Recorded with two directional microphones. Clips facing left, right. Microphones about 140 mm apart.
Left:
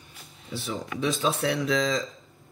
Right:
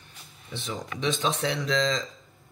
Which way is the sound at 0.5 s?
5° left (ahead or behind).